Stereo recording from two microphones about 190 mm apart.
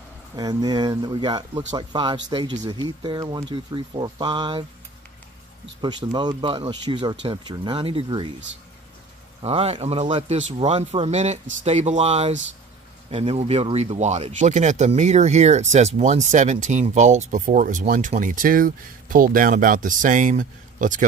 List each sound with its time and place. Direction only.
0.4 s speech: 20° right (ahead or behind)
5.8 s speech: 25° right (ahead or behind)
9.4 s speech: 30° right (ahead or behind)